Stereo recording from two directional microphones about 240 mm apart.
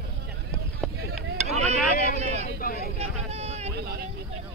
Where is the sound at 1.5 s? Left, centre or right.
Right.